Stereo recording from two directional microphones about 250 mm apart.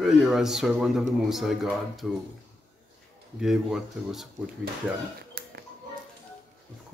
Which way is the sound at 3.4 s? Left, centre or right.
Centre.